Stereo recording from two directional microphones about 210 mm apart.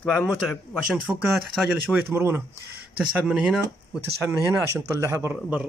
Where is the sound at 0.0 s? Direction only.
5° left (ahead or behind).